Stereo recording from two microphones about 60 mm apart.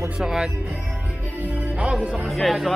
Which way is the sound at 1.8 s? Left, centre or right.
Centre.